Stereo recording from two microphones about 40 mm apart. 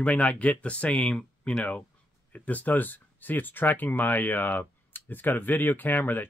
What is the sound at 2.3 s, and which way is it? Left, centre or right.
Speech, left.